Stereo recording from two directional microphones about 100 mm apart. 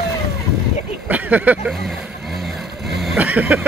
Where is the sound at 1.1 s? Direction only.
15° right (ahead or behind).